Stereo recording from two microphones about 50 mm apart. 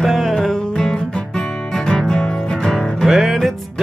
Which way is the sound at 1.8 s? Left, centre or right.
Centre.